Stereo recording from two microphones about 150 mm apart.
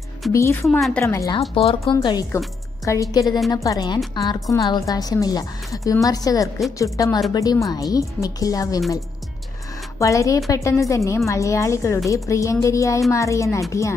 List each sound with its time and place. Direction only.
0.3 s speech: 15° left (ahead or behind)
0.7 s speech: centre (ahead or behind)
1.0 s a woman's voice: 20° left (ahead or behind)
1.5 s speech: 40° left (ahead or behind)
2.0 s a woman's voice: 25° left (ahead or behind)
9.9 s a woman's voice: 20° left (ahead or behind)